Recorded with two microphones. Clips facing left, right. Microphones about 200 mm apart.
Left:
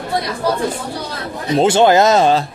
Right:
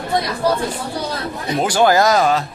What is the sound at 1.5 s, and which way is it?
Speech, 25° left (ahead or behind).